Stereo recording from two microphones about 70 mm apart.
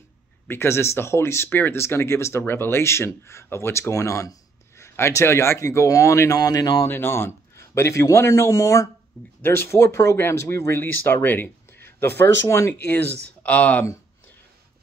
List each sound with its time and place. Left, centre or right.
0.5 s speech: left
6.9 s speech: left
9.4 s speech: left
10.8 s speech: left
12.8 s speech: left